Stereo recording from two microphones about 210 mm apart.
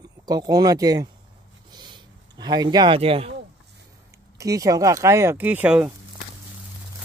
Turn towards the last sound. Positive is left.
turn(degrees=-10)  # may be behind; listen again after turning